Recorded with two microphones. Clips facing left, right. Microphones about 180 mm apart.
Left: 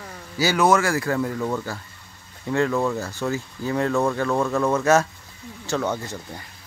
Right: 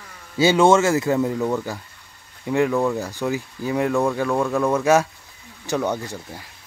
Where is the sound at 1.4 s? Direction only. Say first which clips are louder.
Right 3 dB; 10° right (ahead or behind).